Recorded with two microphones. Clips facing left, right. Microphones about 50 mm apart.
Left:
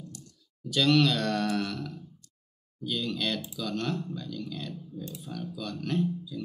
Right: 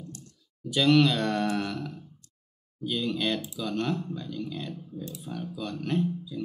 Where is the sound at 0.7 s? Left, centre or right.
Centre.